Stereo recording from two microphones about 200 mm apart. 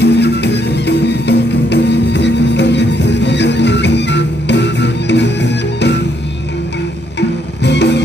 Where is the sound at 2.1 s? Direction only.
60° left (ahead or behind).